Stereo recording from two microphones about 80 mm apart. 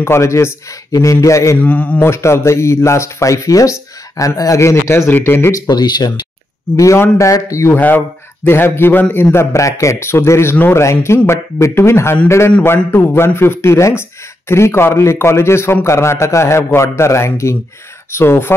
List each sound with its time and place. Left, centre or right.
0.0 s speech: left
1.6 s a man's voice: centre
2.0 s speech: left
5.5 s speech: left
7.0 s speech: left
7.7 s a man's voice: left